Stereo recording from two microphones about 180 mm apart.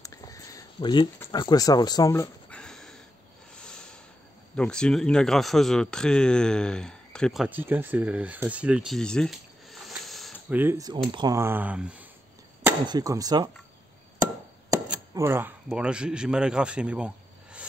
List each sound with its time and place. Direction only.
0.0 s a sound: 20° left (ahead or behind)
2.5 s a sound: 5° left (ahead or behind)
4.6 s a man's voice: 5° left (ahead or behind)
7.4 s speech: 10° right (ahead or behind)
10.5 s speech: 10° right (ahead or behind)
12.8 s speech: 20° right (ahead or behind)
14.9 s speech: 15° right (ahead or behind)